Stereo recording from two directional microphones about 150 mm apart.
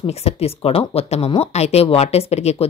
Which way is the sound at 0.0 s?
45° left (ahead or behind).